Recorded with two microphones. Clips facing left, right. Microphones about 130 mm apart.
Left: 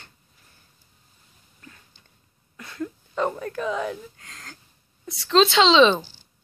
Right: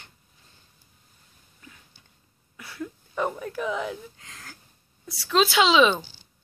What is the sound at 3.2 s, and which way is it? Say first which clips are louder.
Speech: left 2 dB; 15° right (ahead or behind).